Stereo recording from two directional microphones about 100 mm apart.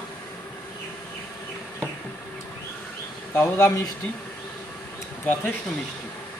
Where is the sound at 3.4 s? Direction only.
25° left (ahead or behind).